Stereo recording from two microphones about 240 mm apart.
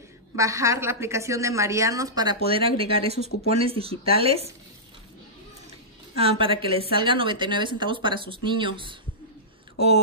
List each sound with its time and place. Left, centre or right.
0.4 s a woman's voice: centre
6.1 s a woman's voice: right